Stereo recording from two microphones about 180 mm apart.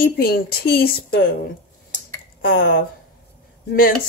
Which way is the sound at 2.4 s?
55° left (ahead or behind).